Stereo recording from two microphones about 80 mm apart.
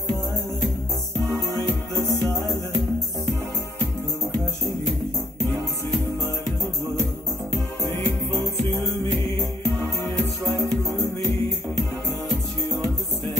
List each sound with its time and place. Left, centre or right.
1.5 s music: right
7.8 s music: right